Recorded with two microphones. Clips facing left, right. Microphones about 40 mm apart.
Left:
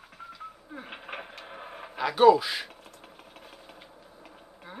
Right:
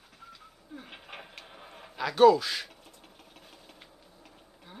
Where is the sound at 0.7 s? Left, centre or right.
Left.